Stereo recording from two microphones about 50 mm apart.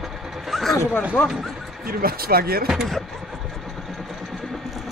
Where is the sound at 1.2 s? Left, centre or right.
Left.